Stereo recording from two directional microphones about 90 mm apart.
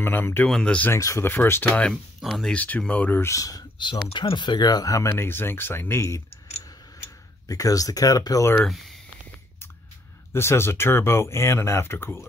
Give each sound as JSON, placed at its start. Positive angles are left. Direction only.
{"t": 0.0, "sound": "speech", "side_deg": 25}
{"t": 0.5, "sound": "speech", "side_deg": 10}
{"t": 0.9, "sound": "speech", "side_deg": 35}
{"t": 1.3, "sound": "speech", "side_deg": 25}
{"t": 3.3, "sound": "speech", "side_deg": 40}
{"t": 4.1, "sound": "speech", "side_deg": 65}
{"t": 7.4, "sound": "speech", "side_deg": 40}
{"t": 8.6, "sound": "speech", "side_deg": 0}
{"t": 10.3, "sound": "speech", "side_deg": 30}